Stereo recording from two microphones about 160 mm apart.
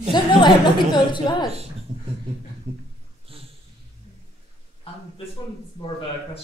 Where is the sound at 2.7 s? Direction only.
40° right (ahead or behind).